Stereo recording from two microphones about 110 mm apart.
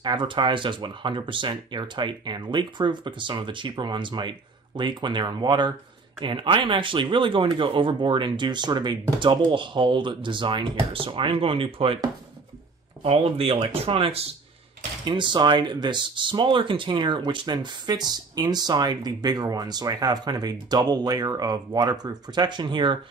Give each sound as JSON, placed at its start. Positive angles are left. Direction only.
{"t": 0.0, "sound": "speech", "side_deg": -45}
{"t": 15.0, "sound": "speech", "side_deg": -45}